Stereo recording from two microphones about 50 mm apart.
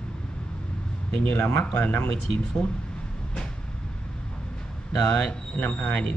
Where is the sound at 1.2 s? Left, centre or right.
Left.